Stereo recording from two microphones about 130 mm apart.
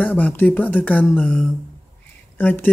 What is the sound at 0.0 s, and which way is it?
Speech, 15° left (ahead or behind).